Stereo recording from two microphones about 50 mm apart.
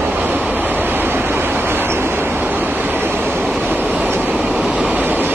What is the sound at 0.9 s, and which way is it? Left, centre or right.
Waves, right.